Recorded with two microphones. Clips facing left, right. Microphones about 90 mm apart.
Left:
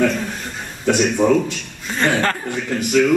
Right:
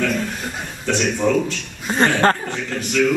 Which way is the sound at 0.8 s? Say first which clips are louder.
Left 4 dB; 5° left (ahead or behind).